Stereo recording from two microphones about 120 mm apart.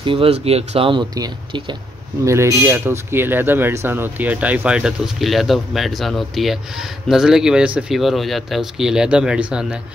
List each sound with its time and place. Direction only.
0.0 s speech: 50° right (ahead or behind)
2.2 s speech: 25° right (ahead or behind); by 9.8 s 10° right (ahead or behind)